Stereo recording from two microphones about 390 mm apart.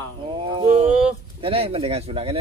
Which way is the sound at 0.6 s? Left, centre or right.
Centre.